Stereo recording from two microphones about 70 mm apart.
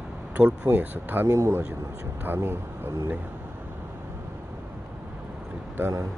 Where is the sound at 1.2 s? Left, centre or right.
Right.